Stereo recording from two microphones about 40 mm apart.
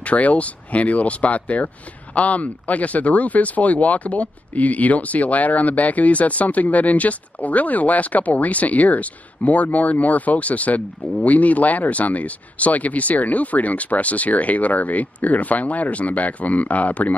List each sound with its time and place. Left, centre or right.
0.0 s speech: left